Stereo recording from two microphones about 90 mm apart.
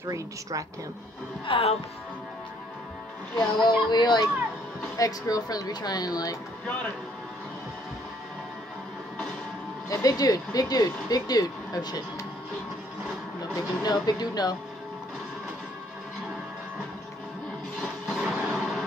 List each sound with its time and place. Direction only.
0.0 s a woman's voice: 35° right (ahead or behind)
1.4 s speech: 75° left (ahead or behind)
3.6 s speech: 55° left (ahead or behind)
4.9 s speech: 40° left (ahead or behind)
10.0 s speech: 45° left (ahead or behind)
13.6 s speech: 50° left (ahead or behind)
17.7 s music: 5° left (ahead or behind)